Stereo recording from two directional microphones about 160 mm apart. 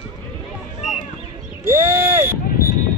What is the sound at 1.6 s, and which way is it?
Speech, 15° right (ahead or behind).